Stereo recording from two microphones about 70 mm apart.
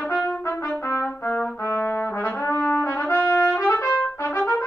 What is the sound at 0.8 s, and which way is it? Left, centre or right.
Trumpet, left.